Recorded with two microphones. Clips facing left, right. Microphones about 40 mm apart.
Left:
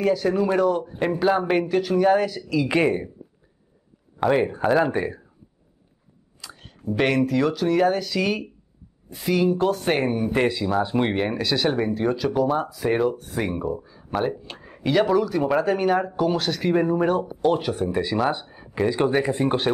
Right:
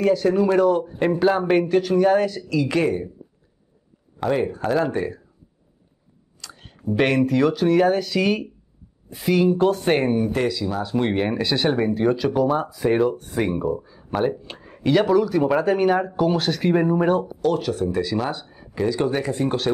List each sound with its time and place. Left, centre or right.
0.0 s speech: centre
4.2 s speech: centre
6.5 s a sound: centre
6.8 s speech: centre
10.3 s speech: left
10.8 s speech: centre
11.1 s speech: centre
17.4 s speech: centre